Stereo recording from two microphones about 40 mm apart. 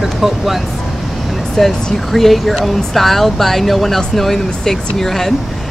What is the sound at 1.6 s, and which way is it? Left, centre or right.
Speech, centre.